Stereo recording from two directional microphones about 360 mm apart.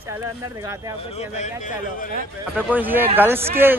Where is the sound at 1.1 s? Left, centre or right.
Centre.